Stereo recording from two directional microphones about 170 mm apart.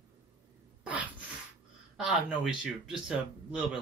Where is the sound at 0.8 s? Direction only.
10° right (ahead or behind).